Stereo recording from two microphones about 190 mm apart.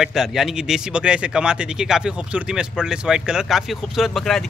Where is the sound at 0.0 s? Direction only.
Centre (ahead or behind).